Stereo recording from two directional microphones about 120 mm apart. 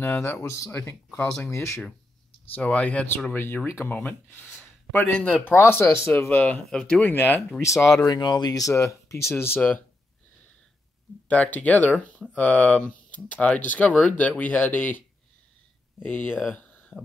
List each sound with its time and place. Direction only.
0.0 s speech: 15° left (ahead or behind)
2.5 s speech: 10° left (ahead or behind)
7.6 s speech: 25° left (ahead or behind)
8.1 s speech: 35° left (ahead or behind); by 9.8 s 15° left (ahead or behind)
11.2 s speech: 10° left (ahead or behind)
16.5 s a sound: 15° left (ahead or behind)